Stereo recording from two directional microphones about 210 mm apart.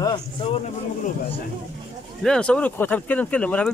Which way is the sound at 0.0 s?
20° left (ahead or behind).